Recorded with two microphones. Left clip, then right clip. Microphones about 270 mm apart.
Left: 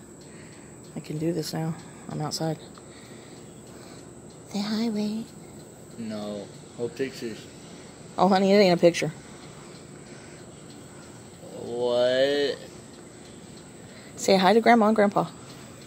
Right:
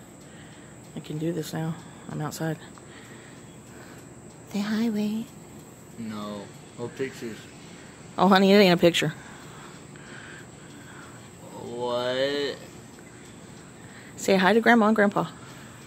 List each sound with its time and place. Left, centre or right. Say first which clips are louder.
1.2 s speech: left 2 dB; centre
4.5 s a woman's voice: right 1 dB; centre
11.8 s a woman's voice: left 4 dB; centre
14.1 s a woman's voice: left 1 dB; centre